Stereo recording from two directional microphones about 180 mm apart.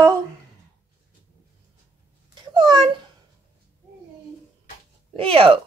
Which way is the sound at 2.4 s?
25° right (ahead or behind).